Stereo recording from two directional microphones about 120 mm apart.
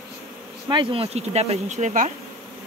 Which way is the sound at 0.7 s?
45° right (ahead or behind).